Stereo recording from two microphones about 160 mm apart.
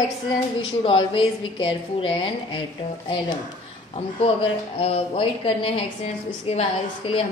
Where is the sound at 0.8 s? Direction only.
30° left (ahead or behind).